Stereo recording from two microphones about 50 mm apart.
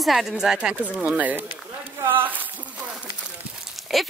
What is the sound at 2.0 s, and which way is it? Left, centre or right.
Speech, right.